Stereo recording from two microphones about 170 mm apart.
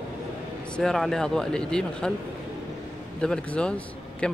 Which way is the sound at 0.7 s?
Centre (ahead or behind).